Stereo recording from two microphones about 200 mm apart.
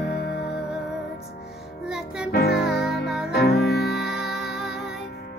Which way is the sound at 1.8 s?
5° right (ahead or behind).